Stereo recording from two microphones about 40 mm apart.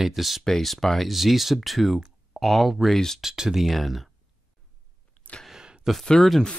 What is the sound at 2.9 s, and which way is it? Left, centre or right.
Speech, centre.